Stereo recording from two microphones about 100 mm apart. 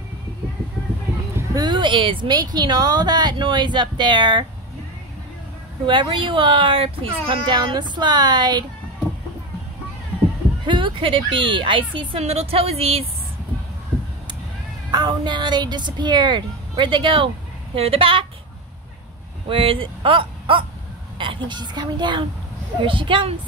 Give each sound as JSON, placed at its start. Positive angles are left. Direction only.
{"t": 1.3, "sound": "a sound", "side_deg": -35}
{"t": 1.7, "sound": "speech", "side_deg": -55}
{"t": 2.3, "sound": "a child's voice", "side_deg": -40}
{"t": 5.9, "sound": "a child's voice", "side_deg": -60}
{"t": 10.7, "sound": "speech", "side_deg": -55}
{"t": 14.9, "sound": "a child's voice", "side_deg": -50}
{"t": 19.5, "sound": "a child's voice", "side_deg": -65}